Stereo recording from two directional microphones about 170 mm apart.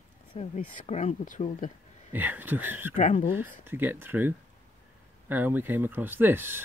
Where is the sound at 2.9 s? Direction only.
50° left (ahead or behind).